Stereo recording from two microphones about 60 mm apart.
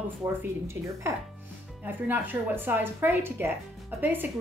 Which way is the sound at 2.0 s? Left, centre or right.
Right.